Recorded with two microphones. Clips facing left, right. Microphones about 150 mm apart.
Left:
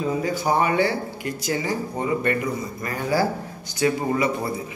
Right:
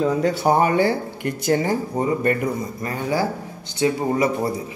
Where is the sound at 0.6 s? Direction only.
45° right (ahead or behind).